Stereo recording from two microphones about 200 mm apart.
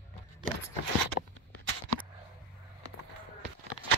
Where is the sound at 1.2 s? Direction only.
40° left (ahead or behind).